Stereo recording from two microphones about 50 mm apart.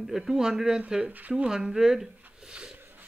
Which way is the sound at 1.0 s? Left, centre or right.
Right.